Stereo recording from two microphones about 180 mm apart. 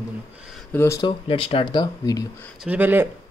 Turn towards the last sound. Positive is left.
turn(degrees=-10)  # may be behind; listen again after turning